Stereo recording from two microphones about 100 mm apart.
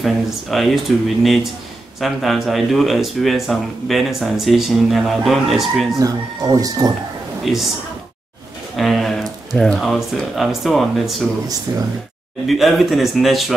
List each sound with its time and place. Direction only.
0.0 s speech: centre (ahead or behind)
5.9 s speech: 35° right (ahead or behind)
7.4 s speech: centre (ahead or behind)
8.7 s a sound: centre (ahead or behind)
9.6 s speech: 5° left (ahead or behind)
11.7 s speech: 40° right (ahead or behind)
12.4 s speech: centre (ahead or behind)